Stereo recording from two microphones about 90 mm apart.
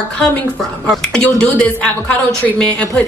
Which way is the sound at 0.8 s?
10° left (ahead or behind).